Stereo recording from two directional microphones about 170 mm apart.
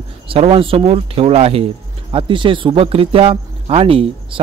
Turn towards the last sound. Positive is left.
turn(degrees=-35)  # may be behind; listen again after turning